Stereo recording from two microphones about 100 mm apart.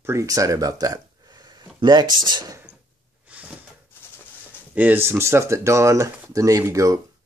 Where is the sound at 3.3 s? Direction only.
15° right (ahead or behind).